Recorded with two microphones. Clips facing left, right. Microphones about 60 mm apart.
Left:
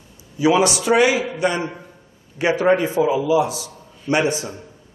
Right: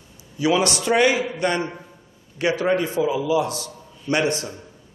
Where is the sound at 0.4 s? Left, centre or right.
Left.